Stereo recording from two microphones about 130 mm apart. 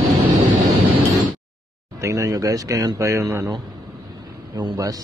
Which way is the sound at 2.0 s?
25° right (ahead or behind).